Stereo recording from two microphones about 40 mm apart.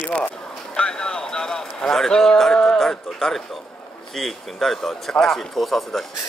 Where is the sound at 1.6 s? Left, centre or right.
Centre.